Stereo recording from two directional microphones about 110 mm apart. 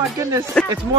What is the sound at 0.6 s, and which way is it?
Speech, 10° left (ahead or behind).